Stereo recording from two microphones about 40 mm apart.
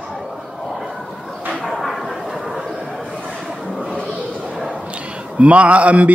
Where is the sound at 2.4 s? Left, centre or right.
Centre.